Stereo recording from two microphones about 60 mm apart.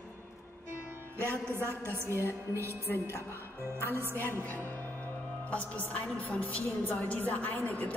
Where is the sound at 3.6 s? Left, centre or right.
Right.